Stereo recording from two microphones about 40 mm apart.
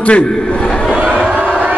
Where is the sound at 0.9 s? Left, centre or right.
Centre.